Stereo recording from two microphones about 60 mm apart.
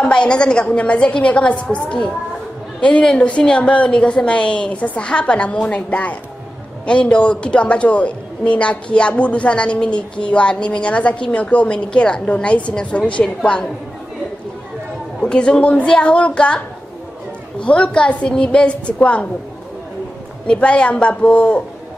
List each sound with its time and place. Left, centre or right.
0.0 s a man's voice: centre
15.2 s a woman's voice: centre
20.4 s a man's voice: centre